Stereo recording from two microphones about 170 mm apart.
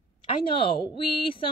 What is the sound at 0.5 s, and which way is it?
Speech, 30° left (ahead or behind).